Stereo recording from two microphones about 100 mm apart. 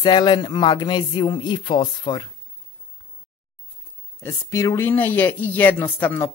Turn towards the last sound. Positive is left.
turn(degrees=20)  # may be behind; listen again after turning